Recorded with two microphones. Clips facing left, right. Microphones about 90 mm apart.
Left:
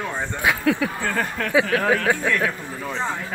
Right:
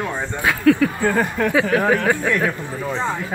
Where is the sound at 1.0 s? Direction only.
15° right (ahead or behind).